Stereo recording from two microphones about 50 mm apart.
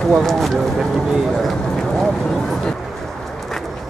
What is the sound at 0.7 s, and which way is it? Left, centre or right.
Speech, centre.